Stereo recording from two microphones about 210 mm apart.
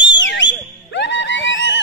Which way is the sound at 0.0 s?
60° left (ahead or behind).